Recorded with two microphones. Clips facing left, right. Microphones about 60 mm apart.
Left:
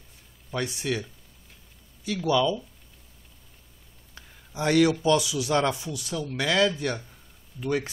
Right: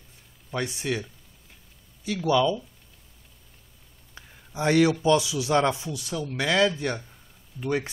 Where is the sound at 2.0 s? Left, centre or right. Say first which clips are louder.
Right 1 dB; right.